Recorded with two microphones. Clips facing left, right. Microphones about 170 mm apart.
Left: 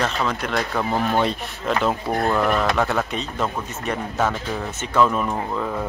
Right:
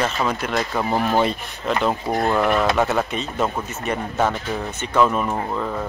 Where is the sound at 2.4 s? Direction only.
5° right (ahead or behind).